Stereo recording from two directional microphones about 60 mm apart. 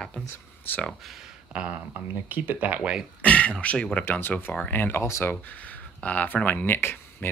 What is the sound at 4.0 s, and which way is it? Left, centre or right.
Speech, left.